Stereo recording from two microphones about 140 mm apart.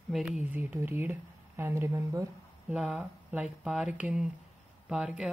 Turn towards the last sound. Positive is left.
turn(degrees=-5)  # may be behind; listen again after turning